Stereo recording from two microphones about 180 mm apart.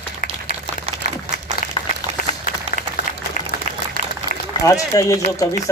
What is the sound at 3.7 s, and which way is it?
Applause, 45° left (ahead or behind).